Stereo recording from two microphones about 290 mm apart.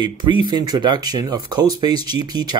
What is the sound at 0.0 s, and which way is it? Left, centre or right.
Speech, centre.